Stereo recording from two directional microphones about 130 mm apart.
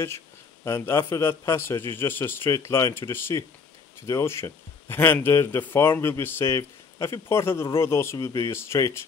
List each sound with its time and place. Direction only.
0.7 s a man's voice: 20° left (ahead or behind)